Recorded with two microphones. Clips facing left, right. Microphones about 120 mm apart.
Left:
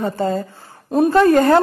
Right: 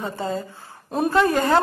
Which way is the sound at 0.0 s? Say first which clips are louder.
Left 7 dB; 50° left (ahead or behind).